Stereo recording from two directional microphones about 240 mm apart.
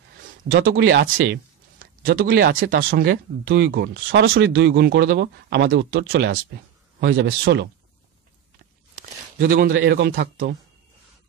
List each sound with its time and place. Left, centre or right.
0.5 s speech: right
8.9 s a sound: right
9.7 s speech: right